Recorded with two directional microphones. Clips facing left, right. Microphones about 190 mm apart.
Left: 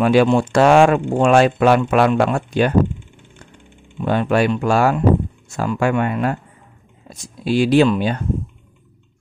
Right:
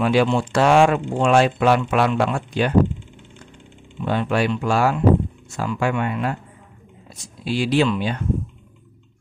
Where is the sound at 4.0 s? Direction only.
50° left (ahead or behind).